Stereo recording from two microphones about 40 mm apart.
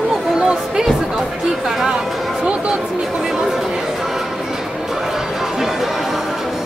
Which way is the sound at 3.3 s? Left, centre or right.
Centre.